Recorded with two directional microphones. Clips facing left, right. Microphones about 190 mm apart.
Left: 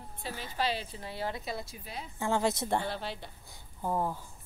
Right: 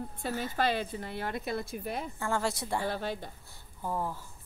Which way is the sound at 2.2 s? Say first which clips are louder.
Left 5 dB; 20° left (ahead or behind).